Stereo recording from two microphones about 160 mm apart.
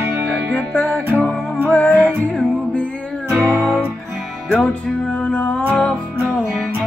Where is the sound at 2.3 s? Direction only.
Centre (ahead or behind).